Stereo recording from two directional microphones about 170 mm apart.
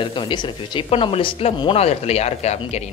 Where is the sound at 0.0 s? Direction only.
30° left (ahead or behind).